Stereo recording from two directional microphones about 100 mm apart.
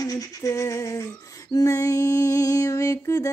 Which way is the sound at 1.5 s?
35° left (ahead or behind).